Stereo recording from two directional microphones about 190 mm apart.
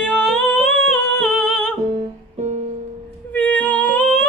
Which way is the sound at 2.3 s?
35° right (ahead or behind).